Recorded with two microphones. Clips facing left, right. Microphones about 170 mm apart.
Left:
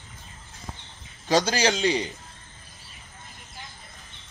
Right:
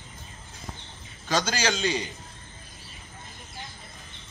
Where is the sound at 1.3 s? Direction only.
30° left (ahead or behind).